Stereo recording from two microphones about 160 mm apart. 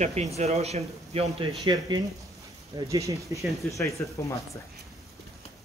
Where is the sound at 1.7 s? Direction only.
30° right (ahead or behind).